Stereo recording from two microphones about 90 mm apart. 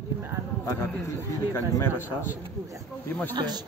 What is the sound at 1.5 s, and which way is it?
Speech, 30° left (ahead or behind).